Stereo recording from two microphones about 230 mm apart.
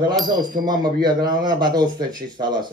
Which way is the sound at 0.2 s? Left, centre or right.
Centre.